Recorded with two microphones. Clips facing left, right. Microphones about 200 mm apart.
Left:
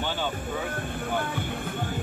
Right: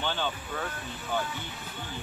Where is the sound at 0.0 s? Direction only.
10° left (ahead or behind).